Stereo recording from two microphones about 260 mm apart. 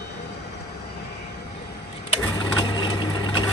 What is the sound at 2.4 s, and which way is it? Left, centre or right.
Vehicle, centre.